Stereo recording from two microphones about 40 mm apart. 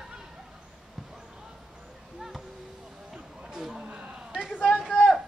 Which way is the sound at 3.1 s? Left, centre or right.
Centre.